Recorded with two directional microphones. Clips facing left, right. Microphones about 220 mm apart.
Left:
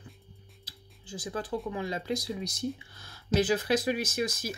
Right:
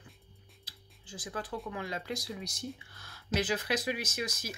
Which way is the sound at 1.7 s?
25° left (ahead or behind).